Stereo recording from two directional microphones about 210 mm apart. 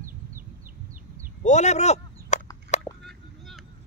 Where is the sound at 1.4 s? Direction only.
35° left (ahead or behind).